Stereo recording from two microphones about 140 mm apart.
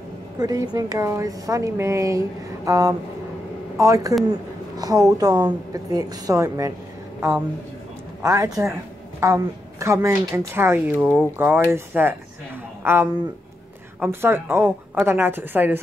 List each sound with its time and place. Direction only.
0.4 s a woman's voice: 25° right (ahead or behind)
7.2 s a woman's voice: 10° right (ahead or behind)
8.2 s a woman's voice: 20° right (ahead or behind)